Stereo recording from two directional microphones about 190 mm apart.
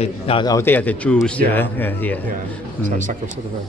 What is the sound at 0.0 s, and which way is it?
Speech, 25° left (ahead or behind).